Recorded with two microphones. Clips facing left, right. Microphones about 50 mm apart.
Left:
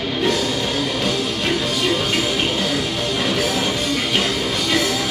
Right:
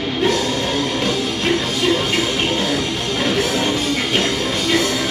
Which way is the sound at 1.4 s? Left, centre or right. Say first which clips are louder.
Right 2 dB; centre.